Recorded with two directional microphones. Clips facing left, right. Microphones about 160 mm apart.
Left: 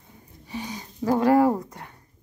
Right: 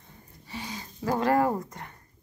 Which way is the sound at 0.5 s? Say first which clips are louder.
Left 4 dB; 15° left (ahead or behind).